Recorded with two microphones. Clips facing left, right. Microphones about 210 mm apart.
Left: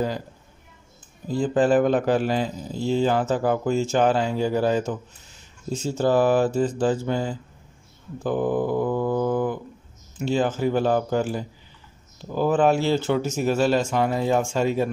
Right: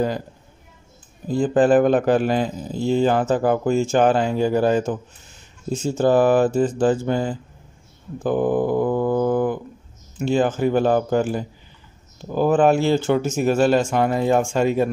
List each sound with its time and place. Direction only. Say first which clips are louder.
1.3 s a man's voice: right 4 dB; 50° right (ahead or behind)